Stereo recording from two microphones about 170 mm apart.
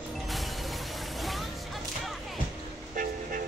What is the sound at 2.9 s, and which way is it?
Vehicle, 55° right (ahead or behind).